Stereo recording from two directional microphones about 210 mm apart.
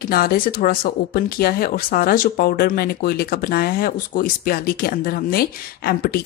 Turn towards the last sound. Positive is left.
turn(degrees=45)  # may be behind; listen again after turning